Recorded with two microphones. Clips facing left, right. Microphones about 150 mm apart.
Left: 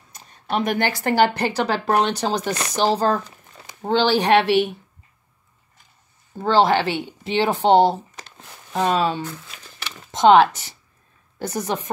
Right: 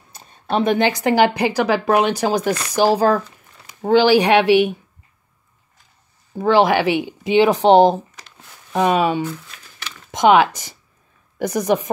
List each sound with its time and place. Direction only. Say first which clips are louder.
0.1 s a sound: right 3 dB; 30° right (ahead or behind)
0.8 s speech: right 3 dB; 15° right (ahead or behind)
6.3 s speech: right 2 dB; 10° right (ahead or behind)